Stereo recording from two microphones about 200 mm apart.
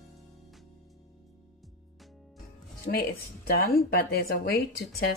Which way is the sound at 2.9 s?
50° left (ahead or behind).